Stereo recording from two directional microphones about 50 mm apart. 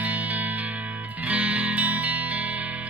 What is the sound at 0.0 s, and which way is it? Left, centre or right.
Music, right.